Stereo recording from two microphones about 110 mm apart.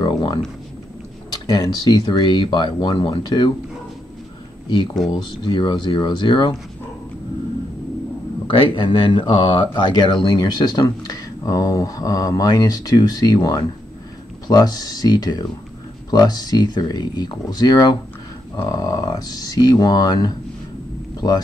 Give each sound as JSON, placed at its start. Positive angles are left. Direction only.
{"t": 0.0, "sound": "a sound", "side_deg": 40}
{"t": 1.5, "sound": "speech", "side_deg": 40}
{"t": 5.1, "sound": "speech", "side_deg": 50}
{"t": 8.5, "sound": "speech", "side_deg": 50}